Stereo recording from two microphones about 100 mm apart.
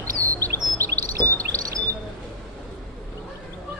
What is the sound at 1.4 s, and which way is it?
Bird, 30° right (ahead or behind).